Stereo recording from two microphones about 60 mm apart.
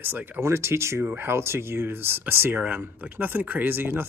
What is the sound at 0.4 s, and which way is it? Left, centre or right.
Speech, right.